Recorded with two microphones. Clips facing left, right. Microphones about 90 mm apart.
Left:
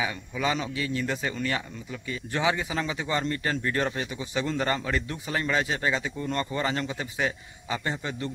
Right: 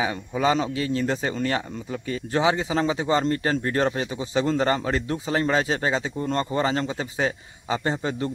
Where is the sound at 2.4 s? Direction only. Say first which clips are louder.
Right 5 dB; 30° right (ahead or behind).